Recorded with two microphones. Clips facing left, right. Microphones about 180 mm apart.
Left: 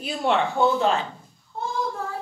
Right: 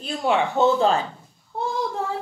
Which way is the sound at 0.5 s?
25° right (ahead or behind).